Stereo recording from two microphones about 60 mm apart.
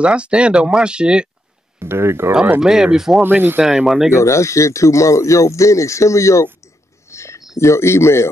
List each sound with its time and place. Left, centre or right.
0.0 s speech: centre
1.8 s speech: right
2.6 s speech: centre
3.2 s speech: right
3.6 s speech: centre
4.2 s speech: left
7.1 s a sound: left
7.5 s speech: left